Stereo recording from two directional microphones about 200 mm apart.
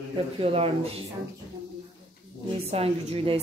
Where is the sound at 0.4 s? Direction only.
30° right (ahead or behind).